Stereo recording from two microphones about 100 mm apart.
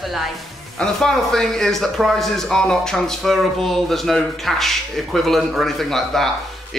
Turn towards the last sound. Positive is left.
turn(degrees=0)  # may be behind; listen again after turning